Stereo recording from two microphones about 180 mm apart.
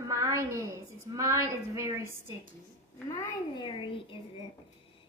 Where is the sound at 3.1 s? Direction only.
25° left (ahead or behind).